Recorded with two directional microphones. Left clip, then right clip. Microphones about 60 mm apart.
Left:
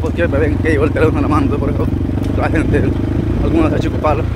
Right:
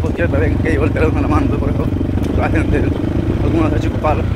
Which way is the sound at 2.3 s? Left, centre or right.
Left.